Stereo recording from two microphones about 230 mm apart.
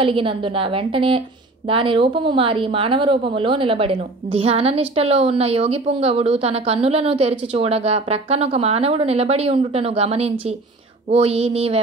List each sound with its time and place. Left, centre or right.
0.0 s speech: right